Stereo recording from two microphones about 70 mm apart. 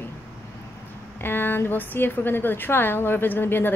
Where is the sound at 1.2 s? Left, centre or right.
Left.